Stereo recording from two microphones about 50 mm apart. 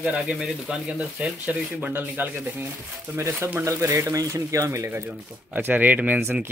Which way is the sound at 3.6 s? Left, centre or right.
Right.